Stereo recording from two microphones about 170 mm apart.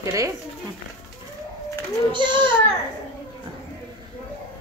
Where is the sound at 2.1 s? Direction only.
30° right (ahead or behind).